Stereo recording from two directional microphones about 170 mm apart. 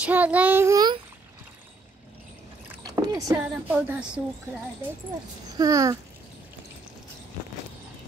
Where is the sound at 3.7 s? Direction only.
10° right (ahead or behind).